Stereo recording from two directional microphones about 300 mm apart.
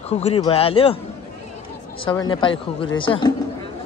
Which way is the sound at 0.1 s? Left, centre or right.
Centre.